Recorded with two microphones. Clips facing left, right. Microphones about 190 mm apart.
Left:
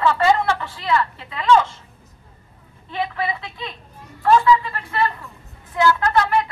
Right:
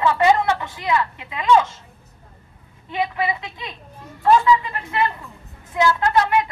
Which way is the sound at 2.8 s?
20° right (ahead or behind).